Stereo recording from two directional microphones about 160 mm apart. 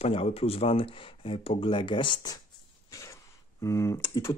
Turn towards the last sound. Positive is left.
turn(degrees=15)  # may be behind; listen again after turning